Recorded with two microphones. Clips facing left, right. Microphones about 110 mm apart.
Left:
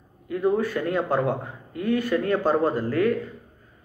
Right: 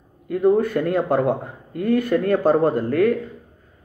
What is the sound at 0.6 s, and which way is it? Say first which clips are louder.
Speech: right 5 dB; 50° right (ahead or behind).